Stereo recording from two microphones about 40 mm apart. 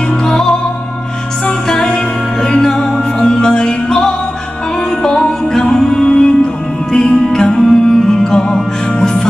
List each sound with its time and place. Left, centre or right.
0.2 s music: centre
1.7 s music: centre